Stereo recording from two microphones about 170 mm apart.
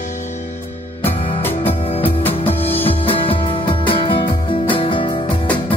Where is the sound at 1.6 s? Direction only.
35° left (ahead or behind).